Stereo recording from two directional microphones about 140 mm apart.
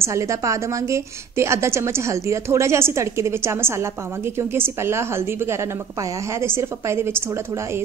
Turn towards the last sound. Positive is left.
turn(degrees=-15)  # may be behind; listen again after turning